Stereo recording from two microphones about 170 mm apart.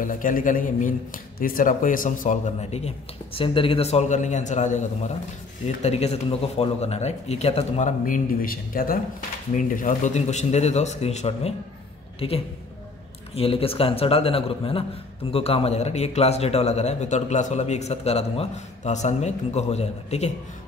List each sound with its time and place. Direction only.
0.0 s a man's voice: 50° left (ahead or behind)
8.0 s speech: 55° left (ahead or behind); by 11.5 s 40° left (ahead or behind)
13.3 s speech: 35° left (ahead or behind)